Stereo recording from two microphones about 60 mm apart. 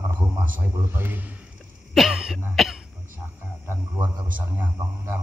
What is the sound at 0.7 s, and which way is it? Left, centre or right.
Speech, right.